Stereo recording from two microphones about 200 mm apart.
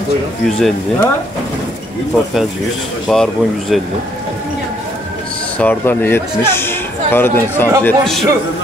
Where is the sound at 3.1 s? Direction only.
5° left (ahead or behind).